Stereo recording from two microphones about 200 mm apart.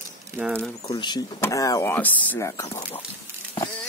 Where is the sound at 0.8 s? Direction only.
20° left (ahead or behind).